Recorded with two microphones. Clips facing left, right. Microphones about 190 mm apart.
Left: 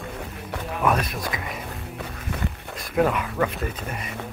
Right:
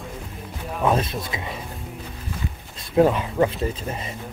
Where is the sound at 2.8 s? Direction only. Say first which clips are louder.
Right 4 dB; 30° right (ahead or behind).